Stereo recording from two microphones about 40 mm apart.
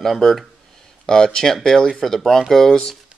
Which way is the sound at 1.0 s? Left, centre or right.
Centre.